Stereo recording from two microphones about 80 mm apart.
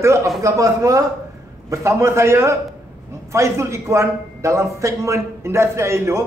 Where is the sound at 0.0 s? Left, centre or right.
Right.